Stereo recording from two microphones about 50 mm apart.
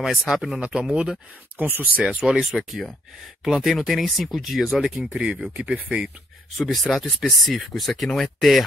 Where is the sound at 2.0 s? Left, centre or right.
Centre.